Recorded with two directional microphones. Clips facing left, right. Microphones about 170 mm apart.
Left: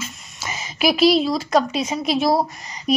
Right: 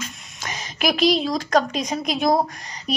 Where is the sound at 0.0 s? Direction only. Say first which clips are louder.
Left 1 dB; 5° left (ahead or behind).